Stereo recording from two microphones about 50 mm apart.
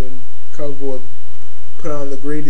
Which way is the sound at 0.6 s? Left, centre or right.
Right.